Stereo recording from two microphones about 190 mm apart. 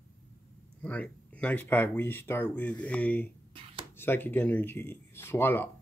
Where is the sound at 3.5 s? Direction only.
30° right (ahead or behind).